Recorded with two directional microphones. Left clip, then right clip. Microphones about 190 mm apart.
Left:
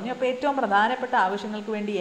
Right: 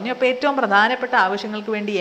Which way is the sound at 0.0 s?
30° right (ahead or behind).